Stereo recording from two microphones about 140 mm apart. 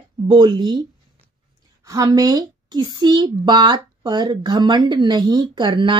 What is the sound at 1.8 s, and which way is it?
A child's voice, 25° right (ahead or behind).